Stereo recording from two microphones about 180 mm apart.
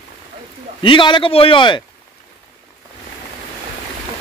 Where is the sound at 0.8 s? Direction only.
25° left (ahead or behind).